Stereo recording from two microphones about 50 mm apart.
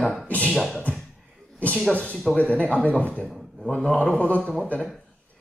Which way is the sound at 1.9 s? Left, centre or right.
Left.